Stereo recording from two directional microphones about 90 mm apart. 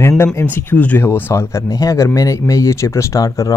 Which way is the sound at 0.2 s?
30° left (ahead or behind).